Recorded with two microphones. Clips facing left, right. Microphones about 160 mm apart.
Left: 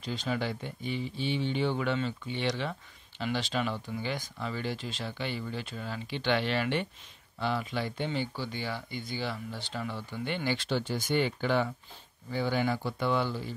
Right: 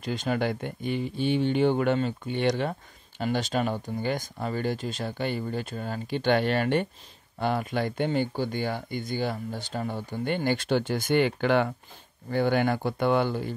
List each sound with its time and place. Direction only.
0.0 s speech: 50° right (ahead or behind)